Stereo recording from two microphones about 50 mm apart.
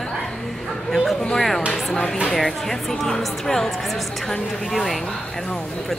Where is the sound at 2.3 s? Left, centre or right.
Centre.